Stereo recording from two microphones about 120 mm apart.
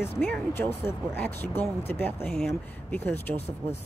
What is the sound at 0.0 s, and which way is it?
Speech, 15° left (ahead or behind).